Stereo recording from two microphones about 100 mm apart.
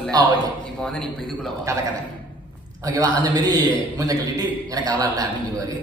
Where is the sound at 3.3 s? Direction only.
40° right (ahead or behind).